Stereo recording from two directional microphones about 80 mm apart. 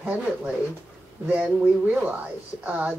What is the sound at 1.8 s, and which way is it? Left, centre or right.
Speech, centre.